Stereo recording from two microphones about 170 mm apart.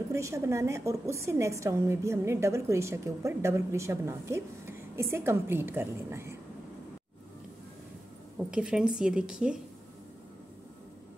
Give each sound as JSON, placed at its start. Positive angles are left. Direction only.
{"t": 0.1, "sound": "a woman's voice", "side_deg": -15}
{"t": 8.4, "sound": "a woman's voice", "side_deg": -5}